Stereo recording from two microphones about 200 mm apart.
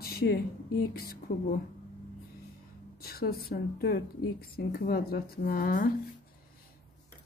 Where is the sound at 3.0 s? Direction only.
50° left (ahead or behind).